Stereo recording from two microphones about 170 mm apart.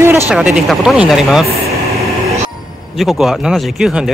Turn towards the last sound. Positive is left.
turn(degrees=-5)  # may be behind; listen again after turning